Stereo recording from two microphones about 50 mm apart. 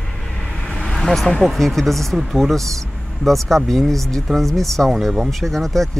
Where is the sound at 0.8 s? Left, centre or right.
Centre.